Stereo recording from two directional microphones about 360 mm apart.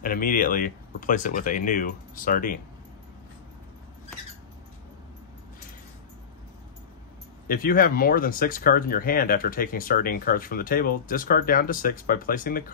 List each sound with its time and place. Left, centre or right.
0.0 s speech: left
7.4 s speech: left